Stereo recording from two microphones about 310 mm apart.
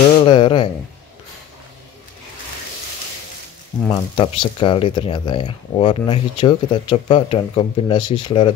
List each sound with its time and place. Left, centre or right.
0.2 s speech: centre
3.9 s speech: centre